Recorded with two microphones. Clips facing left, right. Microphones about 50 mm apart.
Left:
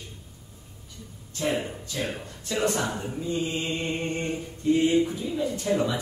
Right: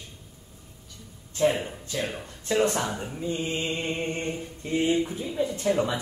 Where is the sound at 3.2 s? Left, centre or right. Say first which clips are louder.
Even; right.